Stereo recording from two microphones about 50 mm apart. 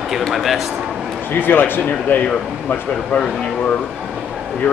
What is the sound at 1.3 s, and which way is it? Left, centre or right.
Speech, left.